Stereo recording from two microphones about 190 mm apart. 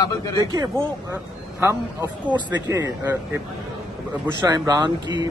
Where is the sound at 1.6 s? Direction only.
15° right (ahead or behind).